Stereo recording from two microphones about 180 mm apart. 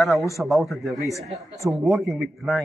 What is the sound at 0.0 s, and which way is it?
Speech, centre (ahead or behind).